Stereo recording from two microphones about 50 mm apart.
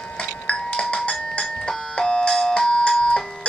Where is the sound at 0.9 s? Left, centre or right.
Left.